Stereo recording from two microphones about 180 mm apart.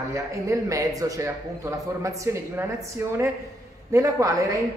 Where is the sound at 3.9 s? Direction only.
20° right (ahead or behind).